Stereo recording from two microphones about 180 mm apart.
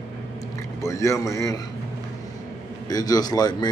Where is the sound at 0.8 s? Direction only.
15° left (ahead or behind).